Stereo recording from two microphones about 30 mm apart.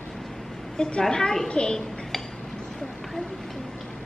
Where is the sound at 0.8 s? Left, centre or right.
Left.